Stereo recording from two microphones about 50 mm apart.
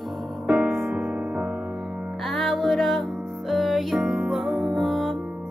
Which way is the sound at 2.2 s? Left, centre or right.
Centre.